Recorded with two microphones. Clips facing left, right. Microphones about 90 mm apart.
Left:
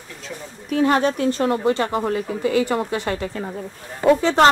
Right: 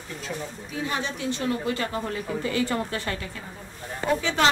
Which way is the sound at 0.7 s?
65° left (ahead or behind).